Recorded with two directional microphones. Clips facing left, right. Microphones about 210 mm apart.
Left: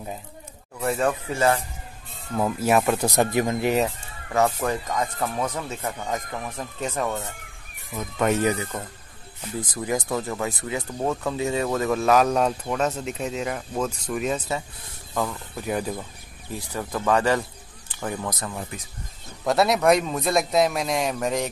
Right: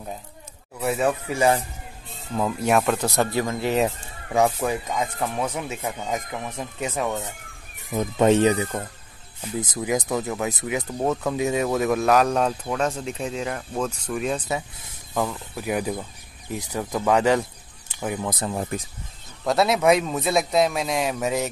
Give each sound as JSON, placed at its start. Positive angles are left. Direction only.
{"t": 0.7, "sound": "speech", "side_deg": -5}
{"t": 2.3, "sound": "speech", "side_deg": 5}
{"t": 3.1, "sound": "speech", "side_deg": 15}
{"t": 3.8, "sound": "speech", "side_deg": -15}
{"t": 7.9, "sound": "speech", "side_deg": -30}
{"t": 10.0, "sound": "speech", "side_deg": -5}
{"t": 12.3, "sound": "speech", "side_deg": 5}
{"t": 15.1, "sound": "speech", "side_deg": -15}
{"t": 18.3, "sound": "speech", "side_deg": -30}
{"t": 19.4, "sound": "speech", "side_deg": 0}